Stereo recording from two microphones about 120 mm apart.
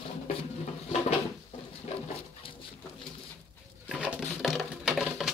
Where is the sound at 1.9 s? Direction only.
65° left (ahead or behind).